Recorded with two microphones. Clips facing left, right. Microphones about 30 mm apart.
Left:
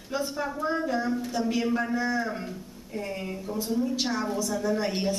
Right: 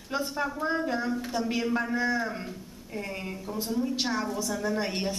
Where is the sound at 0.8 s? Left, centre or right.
Centre.